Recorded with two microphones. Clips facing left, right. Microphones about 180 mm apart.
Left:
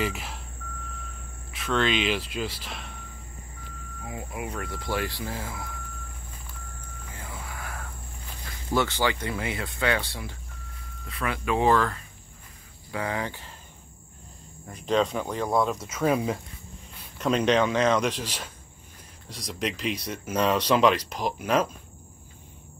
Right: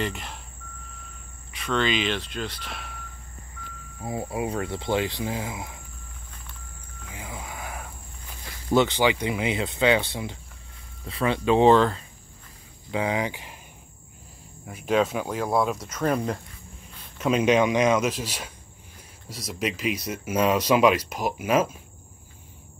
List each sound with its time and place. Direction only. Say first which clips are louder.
0.0 s cricket: even; 5° left (ahead or behind)
1.5 s speech: even; centre (ahead or behind)
4.0 s speech: right 7 dB; 35° right (ahead or behind); by 5.8 s 20° right (ahead or behind)
7.1 s a sound: right 3 dB; 15° right (ahead or behind)
8.7 s speech: right 5 dB; 20° right (ahead or behind)
14.7 s speech: right 1 dB; 5° right (ahead or behind)
17.2 s speech: right 2 dB; 10° right (ahead or behind)